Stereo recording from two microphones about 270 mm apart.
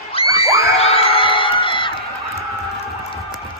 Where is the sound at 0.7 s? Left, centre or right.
Left.